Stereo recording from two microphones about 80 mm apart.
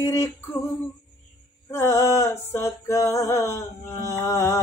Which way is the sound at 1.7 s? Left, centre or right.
Left.